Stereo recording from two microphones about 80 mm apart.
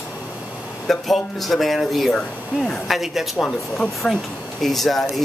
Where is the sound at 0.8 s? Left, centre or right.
Centre.